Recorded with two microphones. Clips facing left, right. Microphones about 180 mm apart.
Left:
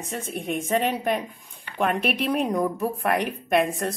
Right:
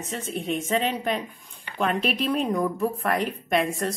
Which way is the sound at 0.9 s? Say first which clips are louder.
Left 2 dB; 10° left (ahead or behind).